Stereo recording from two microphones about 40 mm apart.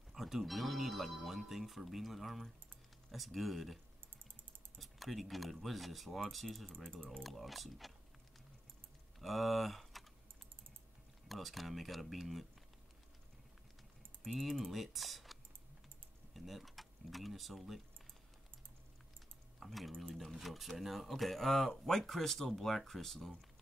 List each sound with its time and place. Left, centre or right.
0.1 s speech: centre
4.8 s speech: centre
6.7 s speech: centre
7.2 s speech: centre
9.2 s speech: centre
11.2 s speech: centre
14.2 s speech: centre
16.3 s speech: centre
19.6 s speech: centre